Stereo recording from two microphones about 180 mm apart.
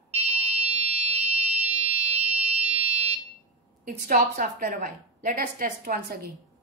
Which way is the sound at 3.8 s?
50° right (ahead or behind).